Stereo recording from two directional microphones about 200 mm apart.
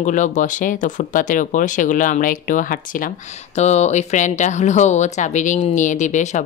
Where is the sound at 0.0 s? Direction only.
40° left (ahead or behind).